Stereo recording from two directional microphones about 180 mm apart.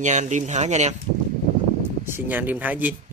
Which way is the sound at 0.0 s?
40° right (ahead or behind).